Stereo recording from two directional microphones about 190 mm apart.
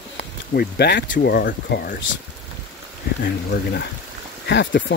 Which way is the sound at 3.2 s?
60° left (ahead or behind).